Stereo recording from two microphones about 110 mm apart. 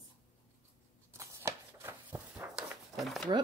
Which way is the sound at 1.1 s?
25° right (ahead or behind).